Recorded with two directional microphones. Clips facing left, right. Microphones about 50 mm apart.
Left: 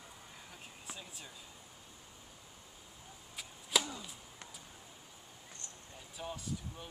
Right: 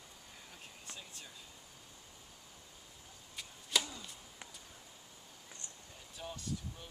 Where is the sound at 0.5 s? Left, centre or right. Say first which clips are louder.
Left 2 dB; centre.